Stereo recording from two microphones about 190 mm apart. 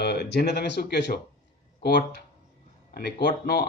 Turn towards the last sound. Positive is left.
turn(degrees=60)  # may be behind; listen again after turning